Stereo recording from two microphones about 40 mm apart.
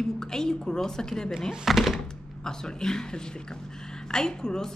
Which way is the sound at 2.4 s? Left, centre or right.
Centre.